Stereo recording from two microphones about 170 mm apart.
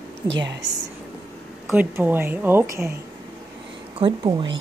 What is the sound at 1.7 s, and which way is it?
A woman's voice, 10° right (ahead or behind).